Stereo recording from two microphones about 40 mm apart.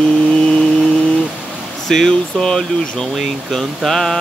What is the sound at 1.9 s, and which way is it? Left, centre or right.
Speech, centre.